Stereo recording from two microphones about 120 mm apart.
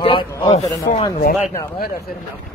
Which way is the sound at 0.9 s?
90° left.